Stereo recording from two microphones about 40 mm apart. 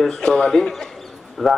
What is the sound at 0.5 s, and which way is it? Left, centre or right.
A man's voice, centre.